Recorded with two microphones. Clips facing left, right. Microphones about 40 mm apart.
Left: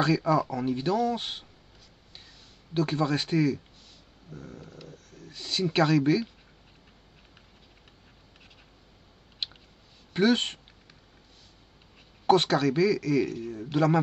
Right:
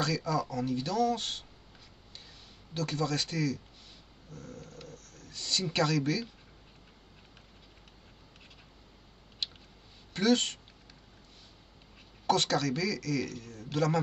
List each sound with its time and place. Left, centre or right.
0.0 s a man's voice: left
2.7 s a man's voice: left
4.3 s speech: centre
9.4 s a sound: left
10.1 s a man's voice: left
12.3 s a man's voice: left